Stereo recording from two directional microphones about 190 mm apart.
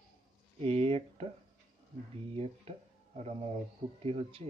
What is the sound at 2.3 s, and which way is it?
Speech, 30° right (ahead or behind).